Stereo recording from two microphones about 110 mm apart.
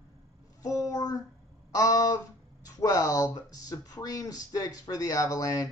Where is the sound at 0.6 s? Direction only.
35° left (ahead or behind).